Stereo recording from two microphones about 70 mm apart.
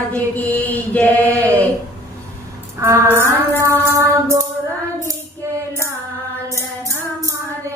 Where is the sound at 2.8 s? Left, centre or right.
Right.